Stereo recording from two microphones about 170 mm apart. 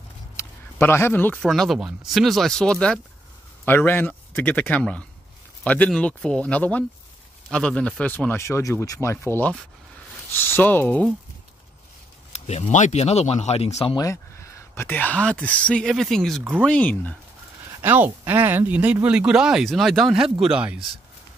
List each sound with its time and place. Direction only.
0.4 s speech: 15° left (ahead or behind)
12.3 s speech: 40° left (ahead or behind)
13.8 s speech: 20° left (ahead or behind)
17.8 s speech: 10° right (ahead or behind)